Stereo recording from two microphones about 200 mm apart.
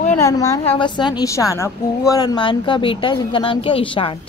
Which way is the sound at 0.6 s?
25° left (ahead or behind).